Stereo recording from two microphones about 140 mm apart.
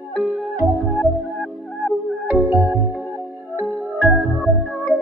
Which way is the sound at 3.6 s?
Centre (ahead or behind).